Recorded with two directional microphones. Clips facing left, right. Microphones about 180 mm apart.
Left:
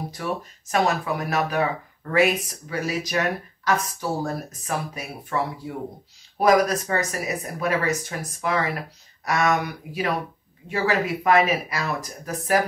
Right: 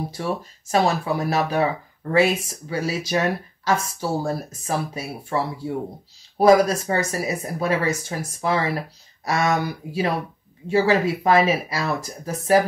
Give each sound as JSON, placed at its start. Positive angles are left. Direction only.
{"t": 0.1, "sound": "speech", "side_deg": -30}